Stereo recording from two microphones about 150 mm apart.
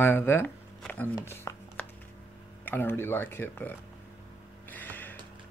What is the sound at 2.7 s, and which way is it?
Speech, 15° left (ahead or behind).